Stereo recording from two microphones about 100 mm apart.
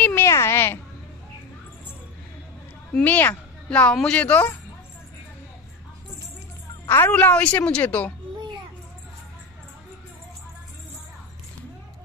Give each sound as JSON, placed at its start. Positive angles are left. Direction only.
{"t": 0.0, "sound": "a sound", "side_deg": 25}
{"t": 2.9, "sound": "speech", "side_deg": 15}
{"t": 6.9, "sound": "speech", "side_deg": 20}